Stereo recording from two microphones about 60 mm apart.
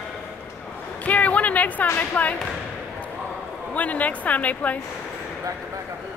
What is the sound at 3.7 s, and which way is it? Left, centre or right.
Speech, left.